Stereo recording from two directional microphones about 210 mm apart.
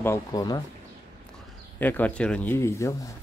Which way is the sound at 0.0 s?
15° left (ahead or behind).